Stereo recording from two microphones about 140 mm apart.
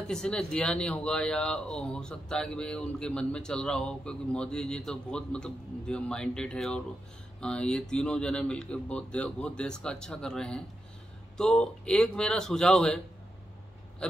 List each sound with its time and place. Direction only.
0.1 s speech: 5° left (ahead or behind)